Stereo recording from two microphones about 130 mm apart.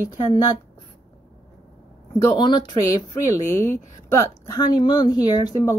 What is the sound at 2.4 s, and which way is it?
Speech, 35° left (ahead or behind).